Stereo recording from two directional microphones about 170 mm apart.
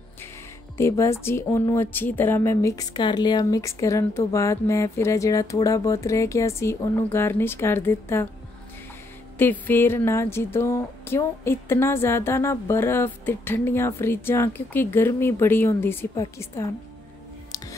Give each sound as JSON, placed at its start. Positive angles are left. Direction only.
{"t": 0.7, "sound": "speech", "side_deg": 15}
{"t": 9.4, "sound": "speech", "side_deg": 10}